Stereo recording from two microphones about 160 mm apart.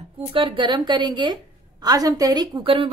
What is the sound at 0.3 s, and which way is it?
A woman's voice, 30° right (ahead or behind).